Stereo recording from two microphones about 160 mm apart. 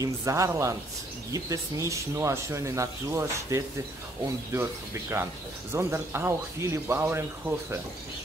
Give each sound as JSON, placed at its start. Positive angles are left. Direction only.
{"t": 0.0, "sound": "speech", "side_deg": -20}
{"t": 5.1, "sound": "speech", "side_deg": -15}